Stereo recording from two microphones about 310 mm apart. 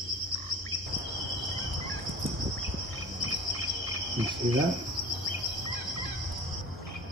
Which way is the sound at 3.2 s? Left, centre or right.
Left.